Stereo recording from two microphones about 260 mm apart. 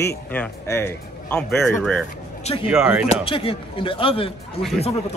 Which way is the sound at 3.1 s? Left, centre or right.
Left.